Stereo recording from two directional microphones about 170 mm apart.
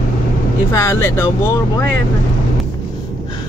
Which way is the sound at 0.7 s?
15° left (ahead or behind).